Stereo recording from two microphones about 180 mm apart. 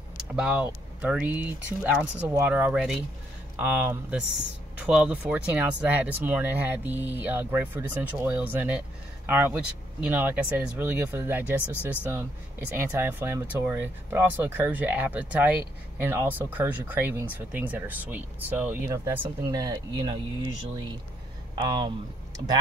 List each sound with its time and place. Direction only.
0.2 s speech: 5° right (ahead or behind)
21.5 s speech: 25° right (ahead or behind)